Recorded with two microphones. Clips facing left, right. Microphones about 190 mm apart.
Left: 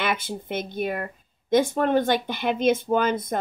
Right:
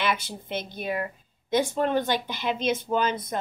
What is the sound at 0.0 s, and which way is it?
Speech, 55° left (ahead or behind).